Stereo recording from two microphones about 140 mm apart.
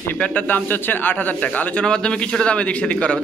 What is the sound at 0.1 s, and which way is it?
Speech, 10° left (ahead or behind).